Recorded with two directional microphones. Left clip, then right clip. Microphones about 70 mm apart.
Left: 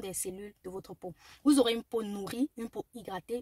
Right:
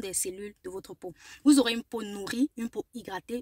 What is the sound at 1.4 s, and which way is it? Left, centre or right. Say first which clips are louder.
Speech: right 3 dB; left.